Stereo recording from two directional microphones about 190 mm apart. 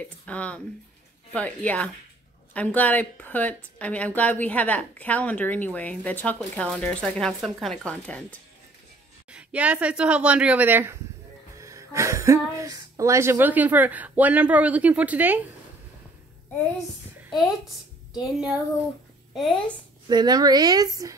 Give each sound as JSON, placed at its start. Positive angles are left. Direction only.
{"t": 0.3, "sound": "speech", "side_deg": 5}
{"t": 9.3, "sound": "speech", "side_deg": -5}
{"t": 18.2, "sound": "a woman's voice", "side_deg": -5}
{"t": 20.1, "sound": "a woman's voice", "side_deg": -20}